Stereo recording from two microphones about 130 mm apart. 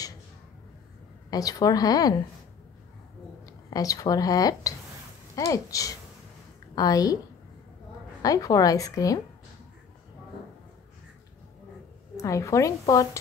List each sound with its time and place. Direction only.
1.3 s a woman's voice: 30° left (ahead or behind)
3.4 s a woman's voice: 25° left (ahead or behind)
8.2 s a woman's voice: 25° left (ahead or behind)
12.2 s a woman's voice: 25° left (ahead or behind)